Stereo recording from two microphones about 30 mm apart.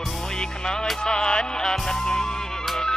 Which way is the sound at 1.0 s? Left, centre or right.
Left.